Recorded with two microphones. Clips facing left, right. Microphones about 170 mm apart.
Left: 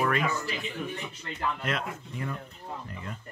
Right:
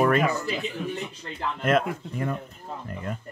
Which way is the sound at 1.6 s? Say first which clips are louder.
Right 10 dB; 50° right (ahead or behind).